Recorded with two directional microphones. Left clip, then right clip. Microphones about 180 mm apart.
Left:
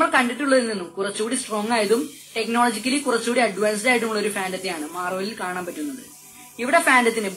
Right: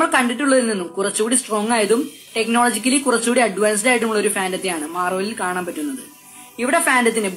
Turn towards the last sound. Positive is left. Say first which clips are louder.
# right 1 dB
turn(degrees=-30)  # may be behind; listen again after turning